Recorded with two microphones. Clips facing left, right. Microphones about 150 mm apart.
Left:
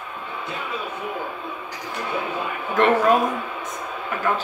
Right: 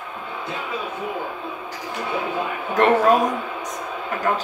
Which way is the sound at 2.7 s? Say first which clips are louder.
Right 1 dB; 40° right (ahead or behind).